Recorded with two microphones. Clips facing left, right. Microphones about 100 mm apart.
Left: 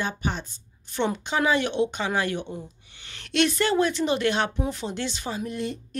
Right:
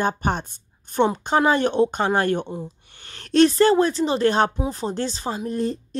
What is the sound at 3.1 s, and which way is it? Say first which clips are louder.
Speech: right 7 dB; 35° right (ahead or behind).